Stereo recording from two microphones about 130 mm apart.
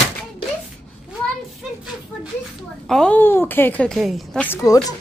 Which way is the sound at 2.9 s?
10° left (ahead or behind).